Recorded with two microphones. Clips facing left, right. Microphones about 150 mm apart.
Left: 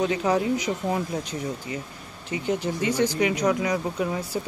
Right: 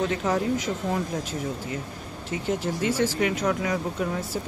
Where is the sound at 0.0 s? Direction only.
Centre (ahead or behind).